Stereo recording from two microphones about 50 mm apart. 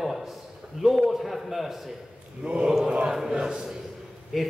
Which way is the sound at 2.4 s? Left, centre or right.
Right.